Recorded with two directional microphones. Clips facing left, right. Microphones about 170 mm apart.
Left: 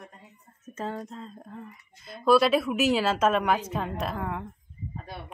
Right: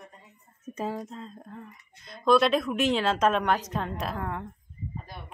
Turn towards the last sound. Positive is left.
turn(degrees=0)  # may be behind; listen again after turning